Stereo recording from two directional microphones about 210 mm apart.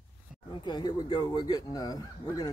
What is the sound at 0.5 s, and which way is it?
Speech, 20° left (ahead or behind).